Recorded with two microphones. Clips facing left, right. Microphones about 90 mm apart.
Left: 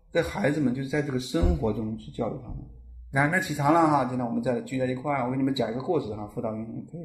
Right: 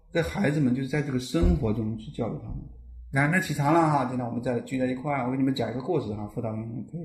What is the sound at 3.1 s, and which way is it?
Speech, 20° left (ahead or behind).